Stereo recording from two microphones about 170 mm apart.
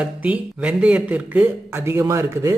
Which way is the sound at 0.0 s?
10° right (ahead or behind).